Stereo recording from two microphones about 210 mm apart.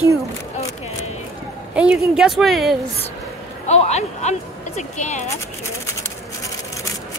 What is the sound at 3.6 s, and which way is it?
Speech, 30° left (ahead or behind).